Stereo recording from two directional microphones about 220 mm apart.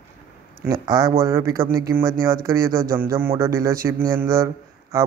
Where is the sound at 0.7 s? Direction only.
15° right (ahead or behind).